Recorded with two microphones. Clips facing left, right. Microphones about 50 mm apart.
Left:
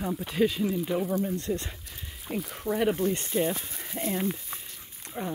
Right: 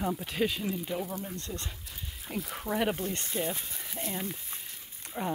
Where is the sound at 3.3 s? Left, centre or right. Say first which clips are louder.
Left 6 dB; centre.